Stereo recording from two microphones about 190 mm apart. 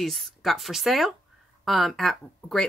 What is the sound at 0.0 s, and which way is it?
Speech, centre (ahead or behind).